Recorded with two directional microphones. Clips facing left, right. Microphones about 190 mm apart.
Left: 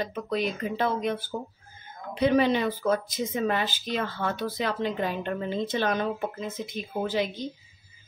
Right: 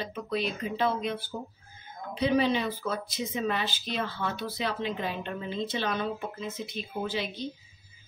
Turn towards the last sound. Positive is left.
turn(degrees=45)  # may be behind; listen again after turning